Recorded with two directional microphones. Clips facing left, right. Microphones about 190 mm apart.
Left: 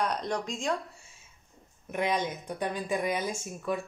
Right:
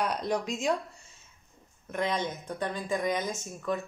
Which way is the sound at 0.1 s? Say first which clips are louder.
Right 2 dB; 10° right (ahead or behind).